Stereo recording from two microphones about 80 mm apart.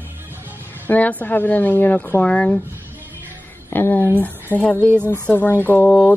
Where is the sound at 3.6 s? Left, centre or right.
Left.